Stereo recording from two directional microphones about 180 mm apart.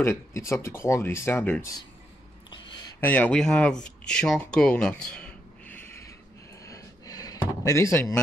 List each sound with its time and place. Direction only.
0.0 s speech: 15° left (ahead or behind)
2.9 s speech: 10° left (ahead or behind)
3.8 s a sound: 5° left (ahead or behind)